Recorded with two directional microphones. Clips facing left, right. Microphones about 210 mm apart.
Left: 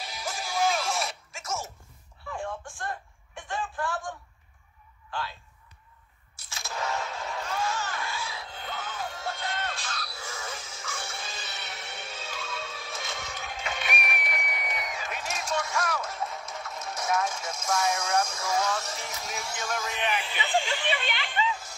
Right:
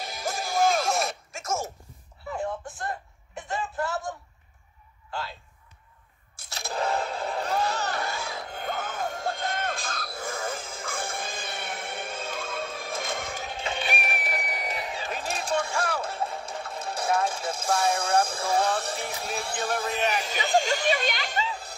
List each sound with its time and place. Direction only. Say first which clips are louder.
0.0 s music: right 4 dB; 50° right (ahead or behind)
2.2 s a sound: right 4 dB; 20° right (ahead or behind)
6.3 s music: right 5 dB; 35° right (ahead or behind); by 13.5 s 50° right (ahead or behind)
13.5 s music: right 2 dB; 30° right (ahead or behind)